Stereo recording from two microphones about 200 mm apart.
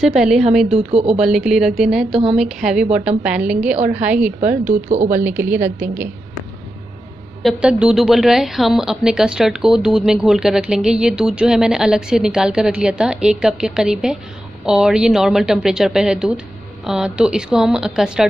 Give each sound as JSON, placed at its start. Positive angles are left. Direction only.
{"t": 0.0, "sound": "speech", "side_deg": -5}
{"t": 0.7, "sound": "speech", "side_deg": -30}
{"t": 1.2, "sound": "a woman's voice", "side_deg": -5}
{"t": 4.8, "sound": "speech", "side_deg": -40}
{"t": 5.2, "sound": "a woman's voice", "side_deg": -10}
{"t": 7.4, "sound": "speech", "side_deg": -5}